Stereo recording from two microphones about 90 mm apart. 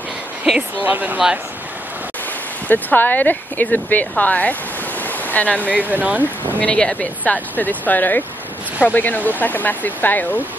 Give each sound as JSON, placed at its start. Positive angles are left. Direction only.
{"t": 0.5, "sound": "speech", "side_deg": 0}
{"t": 0.8, "sound": "speech", "side_deg": -20}
{"t": 2.7, "sound": "speech", "side_deg": 20}
{"t": 5.0, "sound": "waterfall", "side_deg": 20}
{"t": 5.8, "sound": "speech", "side_deg": -15}
{"t": 6.6, "sound": "speech", "side_deg": 10}